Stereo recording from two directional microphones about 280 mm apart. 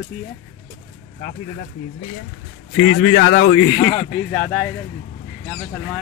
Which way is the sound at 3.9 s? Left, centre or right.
Centre.